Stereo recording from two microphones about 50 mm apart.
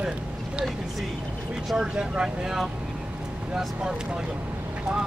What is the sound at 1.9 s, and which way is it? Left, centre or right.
Speech, centre.